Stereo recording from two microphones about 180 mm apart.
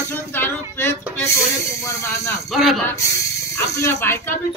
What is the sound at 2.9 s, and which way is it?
Speech, 15° left (ahead or behind).